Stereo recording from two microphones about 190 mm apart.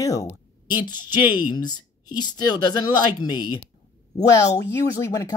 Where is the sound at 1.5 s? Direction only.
20° left (ahead or behind).